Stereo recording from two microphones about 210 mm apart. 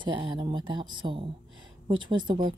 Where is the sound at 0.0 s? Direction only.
25° right (ahead or behind).